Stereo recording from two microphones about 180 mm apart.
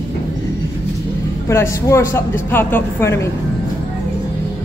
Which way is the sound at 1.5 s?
15° left (ahead or behind).